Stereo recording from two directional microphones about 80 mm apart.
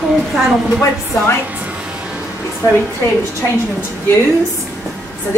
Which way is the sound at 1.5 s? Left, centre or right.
Centre.